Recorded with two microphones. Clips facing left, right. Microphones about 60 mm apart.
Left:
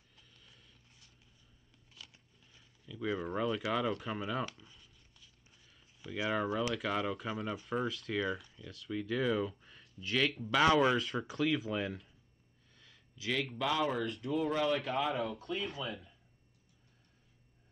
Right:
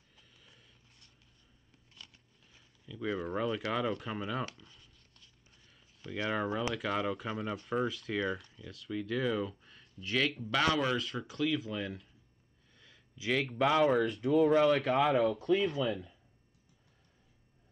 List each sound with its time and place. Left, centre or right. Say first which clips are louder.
0.1 s a sound: right 1 dB; centre
2.5 s speech: right 1 dB; centre
4.6 s a sound: right 1 dB; centre
6.3 s speech: even; centre
12.7 s a sound: right 2 dB; centre
13.3 s speech: right 3 dB; centre
13.6 s speech: right 7 dB; right
14.2 s speech: right 7 dB; right
15.3 s speech: right 9 dB; right